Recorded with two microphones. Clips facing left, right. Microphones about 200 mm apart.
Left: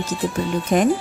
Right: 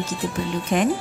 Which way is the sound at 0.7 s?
40° left (ahead or behind).